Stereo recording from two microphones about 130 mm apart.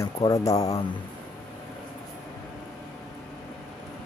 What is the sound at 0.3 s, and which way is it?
Speech, 25° left (ahead or behind).